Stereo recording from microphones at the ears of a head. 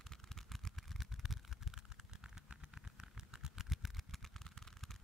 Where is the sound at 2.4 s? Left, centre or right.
Centre.